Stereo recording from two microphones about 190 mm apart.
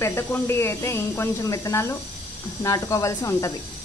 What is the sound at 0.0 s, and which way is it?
Speech, 15° left (ahead or behind).